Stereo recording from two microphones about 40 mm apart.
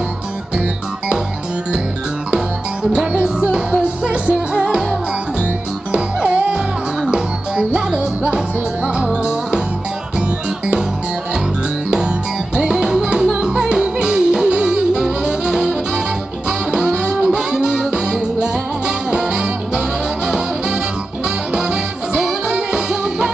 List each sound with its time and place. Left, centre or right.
3.1 s music: right
5.9 s music: right
12.5 s music: centre